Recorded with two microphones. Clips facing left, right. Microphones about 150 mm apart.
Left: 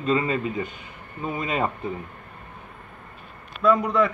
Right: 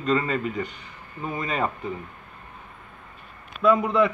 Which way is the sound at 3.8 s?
20° right (ahead or behind).